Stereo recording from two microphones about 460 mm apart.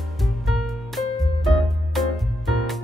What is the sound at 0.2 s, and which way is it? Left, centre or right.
Music, centre.